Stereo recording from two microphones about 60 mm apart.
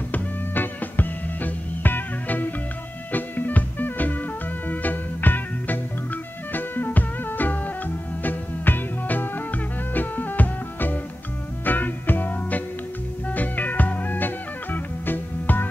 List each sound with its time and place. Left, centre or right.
0.1 s music: left